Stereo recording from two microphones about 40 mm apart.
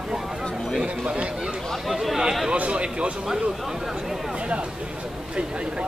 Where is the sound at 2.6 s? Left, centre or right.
Right.